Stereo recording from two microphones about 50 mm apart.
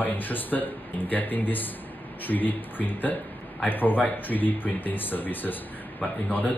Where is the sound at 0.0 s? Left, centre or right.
Left.